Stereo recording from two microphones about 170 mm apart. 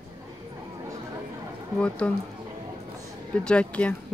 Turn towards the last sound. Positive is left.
turn(degrees=5)  # may be behind; listen again after turning